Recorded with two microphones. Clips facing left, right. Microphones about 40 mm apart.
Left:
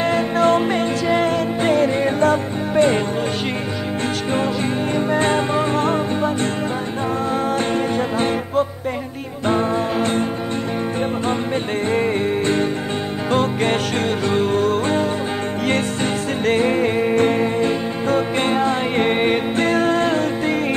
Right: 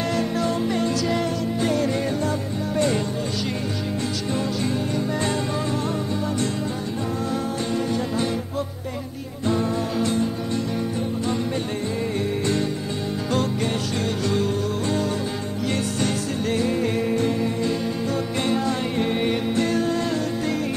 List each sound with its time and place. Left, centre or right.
0.1 s music: left
4.9 s music: left
7.7 s music: left
14.3 s music: left
16.4 s music: left